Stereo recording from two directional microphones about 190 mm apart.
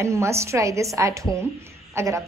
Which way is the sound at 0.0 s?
15° right (ahead or behind).